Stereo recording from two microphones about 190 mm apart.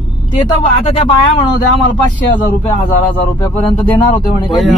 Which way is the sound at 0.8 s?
30° left (ahead or behind).